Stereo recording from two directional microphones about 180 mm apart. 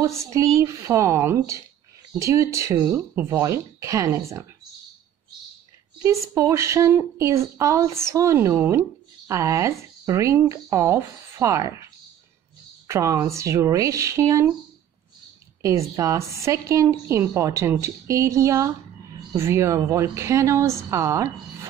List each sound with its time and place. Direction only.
0.6 s a woman's voice: 15° right (ahead or behind)
6.0 s a woman's voice: 15° right (ahead or behind)
15.6 s a woman's voice: 15° right (ahead or behind)